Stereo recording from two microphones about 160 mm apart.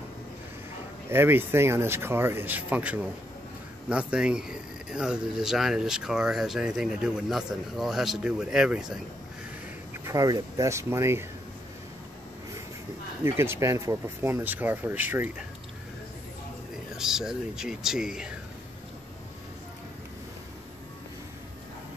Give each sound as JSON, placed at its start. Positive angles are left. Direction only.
{"t": 1.1, "sound": "speech", "side_deg": -15}
{"t": 10.0, "sound": "speech", "side_deg": -20}
{"t": 13.2, "sound": "speech", "side_deg": -15}
{"t": 16.9, "sound": "speech", "side_deg": -5}